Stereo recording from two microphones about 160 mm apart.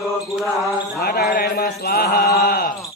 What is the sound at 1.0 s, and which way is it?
Mantra, 70° left (ahead or behind).